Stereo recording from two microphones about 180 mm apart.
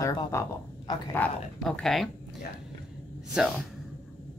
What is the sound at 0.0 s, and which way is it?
Speech, 20° left (ahead or behind).